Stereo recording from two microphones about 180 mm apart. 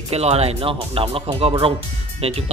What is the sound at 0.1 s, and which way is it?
Speech, 35° right (ahead or behind).